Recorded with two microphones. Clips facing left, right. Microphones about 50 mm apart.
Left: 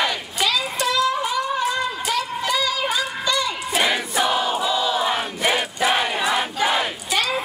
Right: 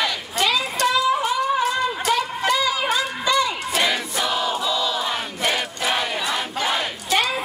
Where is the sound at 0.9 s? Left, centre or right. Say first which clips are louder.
Even; centre.